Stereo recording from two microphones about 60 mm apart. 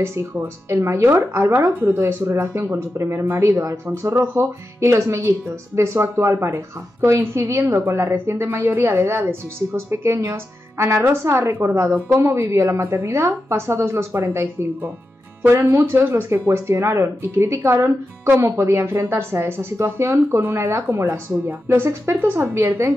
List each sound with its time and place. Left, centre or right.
0.0 s a woman's voice: right
4.1 s a woman's voice: right
4.7 s a woman's voice: right
12.6 s a woman's voice: right
22.5 s a woman's voice: right